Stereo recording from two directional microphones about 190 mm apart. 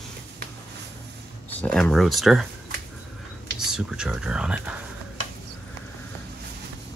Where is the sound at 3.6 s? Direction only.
5° right (ahead or behind).